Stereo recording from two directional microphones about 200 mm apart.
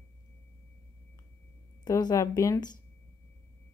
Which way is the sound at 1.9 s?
20° left (ahead or behind).